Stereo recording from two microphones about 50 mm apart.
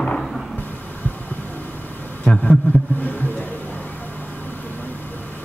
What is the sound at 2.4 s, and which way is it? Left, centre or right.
Vehicle, left.